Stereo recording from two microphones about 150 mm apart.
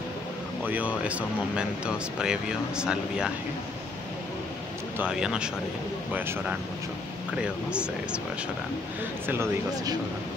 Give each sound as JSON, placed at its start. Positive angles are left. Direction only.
{"t": 0.7, "sound": "speech", "side_deg": -10}
{"t": 4.9, "sound": "speech", "side_deg": -5}
{"t": 9.3, "sound": "speech", "side_deg": -15}